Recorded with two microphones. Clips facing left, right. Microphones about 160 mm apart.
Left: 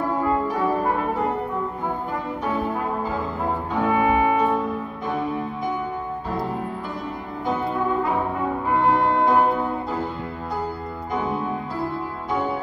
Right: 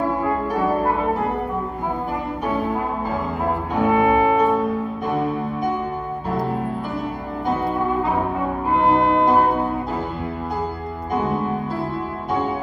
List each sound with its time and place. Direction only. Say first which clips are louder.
3.7 s music: right 3 dB; 15° right (ahead or behind)
8.7 s music: right 3 dB; 20° right (ahead or behind)